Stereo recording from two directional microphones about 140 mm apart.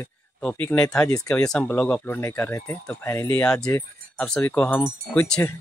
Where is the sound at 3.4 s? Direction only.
5° left (ahead or behind).